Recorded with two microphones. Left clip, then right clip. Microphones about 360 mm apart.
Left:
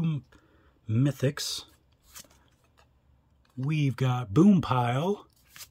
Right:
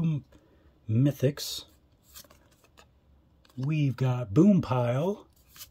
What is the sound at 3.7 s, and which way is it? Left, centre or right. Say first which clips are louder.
Speech: left 1 dB; centre.